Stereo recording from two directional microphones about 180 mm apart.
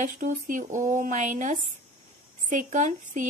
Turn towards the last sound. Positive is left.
turn(degrees=-45)  # may be behind; listen again after turning